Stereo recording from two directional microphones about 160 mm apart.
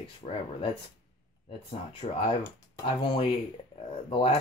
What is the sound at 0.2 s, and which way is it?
Speech, 35° left (ahead or behind).